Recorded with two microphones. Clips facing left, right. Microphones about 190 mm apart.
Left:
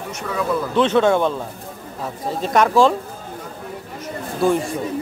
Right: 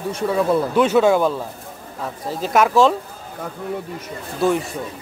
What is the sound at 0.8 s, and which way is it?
A man's voice, 10° right (ahead or behind).